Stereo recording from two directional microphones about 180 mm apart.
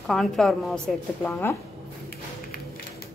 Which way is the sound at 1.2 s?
15° left (ahead or behind).